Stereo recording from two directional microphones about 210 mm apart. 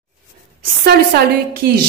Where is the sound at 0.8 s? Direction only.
45° right (ahead or behind).